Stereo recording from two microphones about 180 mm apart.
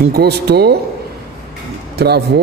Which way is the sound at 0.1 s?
65° right (ahead or behind).